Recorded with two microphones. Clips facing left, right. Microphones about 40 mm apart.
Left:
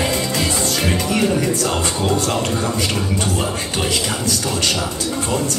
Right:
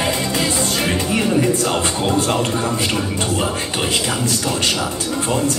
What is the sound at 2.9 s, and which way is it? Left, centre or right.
Speech, centre.